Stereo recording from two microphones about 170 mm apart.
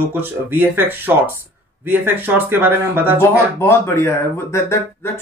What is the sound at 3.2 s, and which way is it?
Speech, 15° left (ahead or behind).